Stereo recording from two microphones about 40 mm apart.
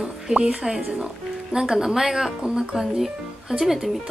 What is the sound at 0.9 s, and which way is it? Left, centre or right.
Speech, centre.